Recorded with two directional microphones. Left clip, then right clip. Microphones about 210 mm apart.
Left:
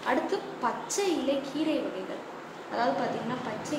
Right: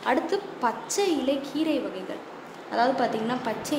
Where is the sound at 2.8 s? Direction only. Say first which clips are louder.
Right 5 dB; 50° right (ahead or behind).